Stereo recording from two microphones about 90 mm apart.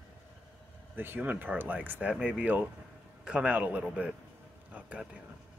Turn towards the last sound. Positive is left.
turn(degrees=-15)  # may be behind; listen again after turning